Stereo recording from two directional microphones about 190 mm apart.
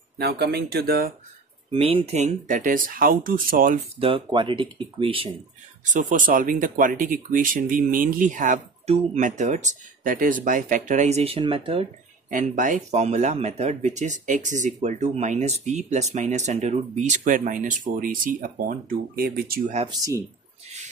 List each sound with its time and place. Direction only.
0.2 s speech: 60° right (ahead or behind)
1.7 s speech: 30° right (ahead or behind); by 3.8 s 45° right (ahead or behind)
4.0 s speech: 25° right (ahead or behind)
5.9 s speech: 45° right (ahead or behind)
12.3 s speech: 45° right (ahead or behind)
19.9 s speech: 20° right (ahead or behind)